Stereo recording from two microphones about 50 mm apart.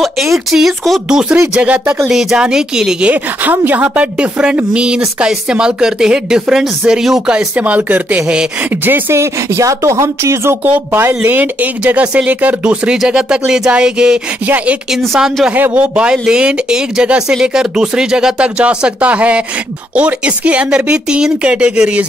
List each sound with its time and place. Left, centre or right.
0.0 s speech: centre
1.0 s speech: centre
2.0 s speech: centre
3.5 s speech: right; by 7.2 s centre
7.5 s speech: right
8.2 s speech: centre
8.6 s speech: right
9.1 s speech: right
10.6 s speech: right
11.2 s speech: right
12.9 s speech: centre
14.4 s speech: right
15.9 s speech: centre